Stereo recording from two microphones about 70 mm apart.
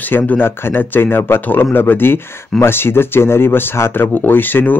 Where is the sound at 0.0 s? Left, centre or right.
Left.